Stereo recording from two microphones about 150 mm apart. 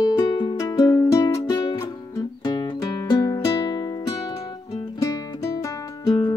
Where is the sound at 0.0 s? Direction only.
30° left (ahead or behind).